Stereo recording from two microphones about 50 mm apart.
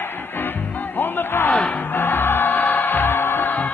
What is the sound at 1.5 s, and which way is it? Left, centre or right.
Music, left.